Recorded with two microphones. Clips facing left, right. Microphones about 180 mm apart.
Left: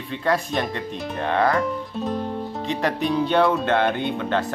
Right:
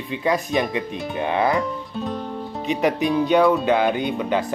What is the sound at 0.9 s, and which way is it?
Speech, centre (ahead or behind).